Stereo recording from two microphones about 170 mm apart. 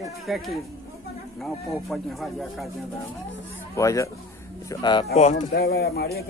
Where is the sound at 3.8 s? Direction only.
20° left (ahead or behind).